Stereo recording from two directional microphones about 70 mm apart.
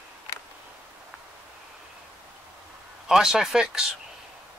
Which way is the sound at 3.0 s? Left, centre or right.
Centre.